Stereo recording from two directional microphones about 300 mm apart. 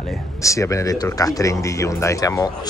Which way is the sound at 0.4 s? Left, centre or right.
Centre.